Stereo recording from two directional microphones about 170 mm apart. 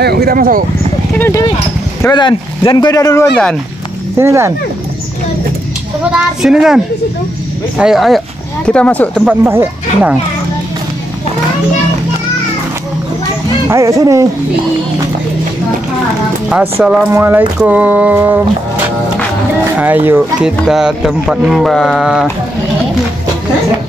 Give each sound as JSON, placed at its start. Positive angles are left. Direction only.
{"t": 0.0, "sound": "speech", "side_deg": -65}
{"t": 1.1, "sound": "speech", "side_deg": 10}
{"t": 2.0, "sound": "speech", "side_deg": 25}
{"t": 4.2, "sound": "speech", "side_deg": -15}
{"t": 6.1, "sound": "speech", "side_deg": -5}
{"t": 9.2, "sound": "speech", "side_deg": -10}
{"t": 13.7, "sound": "speech", "side_deg": -15}
{"t": 16.8, "sound": "speech", "side_deg": -10}
{"t": 19.8, "sound": "speech", "side_deg": -10}